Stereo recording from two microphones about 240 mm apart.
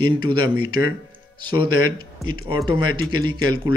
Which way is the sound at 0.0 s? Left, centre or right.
Centre.